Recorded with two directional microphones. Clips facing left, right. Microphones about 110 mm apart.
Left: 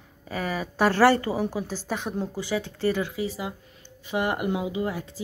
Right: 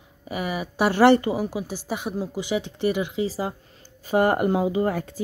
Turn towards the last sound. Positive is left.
turn(degrees=-50)  # may be behind; listen again after turning